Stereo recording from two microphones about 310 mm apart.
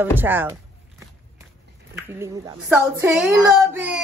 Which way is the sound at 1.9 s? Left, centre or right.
Centre.